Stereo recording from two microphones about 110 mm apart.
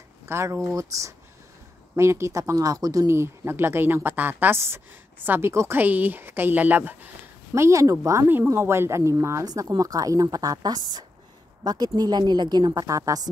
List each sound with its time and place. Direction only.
0.3 s speech: 25° right (ahead or behind)
7.5 s speech: 25° right (ahead or behind)